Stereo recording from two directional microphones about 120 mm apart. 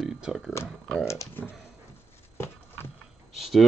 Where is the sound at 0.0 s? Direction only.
Centre (ahead or behind).